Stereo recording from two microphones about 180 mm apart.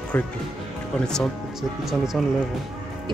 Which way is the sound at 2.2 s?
Centre (ahead or behind).